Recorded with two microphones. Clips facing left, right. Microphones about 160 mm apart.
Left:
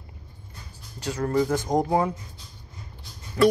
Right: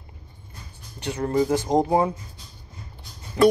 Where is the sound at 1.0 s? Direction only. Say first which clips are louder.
Right 1 dB; 25° right (ahead or behind).